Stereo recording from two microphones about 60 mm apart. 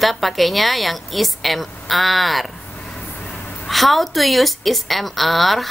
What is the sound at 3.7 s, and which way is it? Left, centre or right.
A woman's voice, centre.